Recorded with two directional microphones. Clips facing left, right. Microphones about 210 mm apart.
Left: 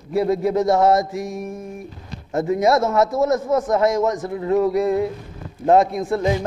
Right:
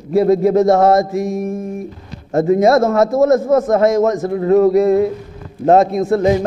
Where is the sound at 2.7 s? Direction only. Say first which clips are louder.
Right 5 dB; 50° right (ahead or behind).